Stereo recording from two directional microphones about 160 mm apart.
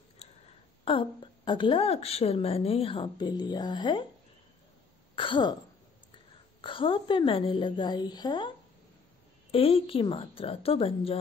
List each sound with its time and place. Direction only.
0.2 s a sound: 40° left (ahead or behind)
0.8 s a woman's voice: 30° left (ahead or behind)
5.1 s throat clearing: 30° left (ahead or behind)
6.6 s a woman's voice: 30° left (ahead or behind)